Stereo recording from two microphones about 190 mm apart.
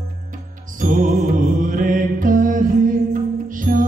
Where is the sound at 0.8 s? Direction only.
45° right (ahead or behind).